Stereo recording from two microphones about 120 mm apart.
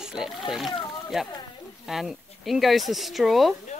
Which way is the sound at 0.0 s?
5° right (ahead or behind).